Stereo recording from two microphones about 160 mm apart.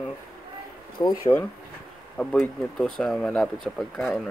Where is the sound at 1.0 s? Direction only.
20° left (ahead or behind).